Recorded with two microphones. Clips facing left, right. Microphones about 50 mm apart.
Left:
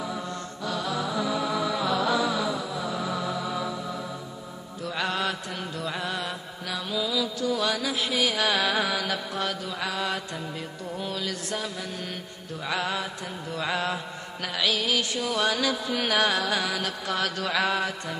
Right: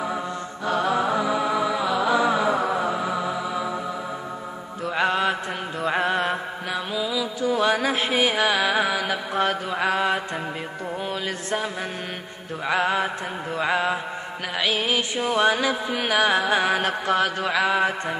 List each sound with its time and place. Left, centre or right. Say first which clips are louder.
0.7 s music: right 8 dB; right; by 2.1 s centre
2.1 s music: right 6 dB; right; by 3.7 s centre
4.8 s mantra: right 6 dB; right
7.5 s a sound: right 9 dB; right
8.5 s music: right 4 dB; centre
9.3 s mantra: right 7 dB; right
12.6 s mantra: right 7 dB; right
14.6 s music: right 2 dB; right
16.3 s music: right 6 dB; right